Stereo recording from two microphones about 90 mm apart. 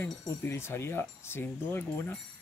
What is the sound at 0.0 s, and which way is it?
Speech, 25° left (ahead or behind).